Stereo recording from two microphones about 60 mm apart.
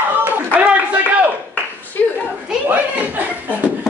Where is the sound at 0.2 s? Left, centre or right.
Right.